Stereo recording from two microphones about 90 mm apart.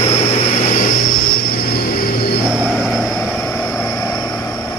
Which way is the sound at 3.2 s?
20° left (ahead or behind).